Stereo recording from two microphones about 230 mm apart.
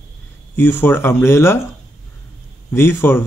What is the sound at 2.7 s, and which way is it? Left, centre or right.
Speech, centre.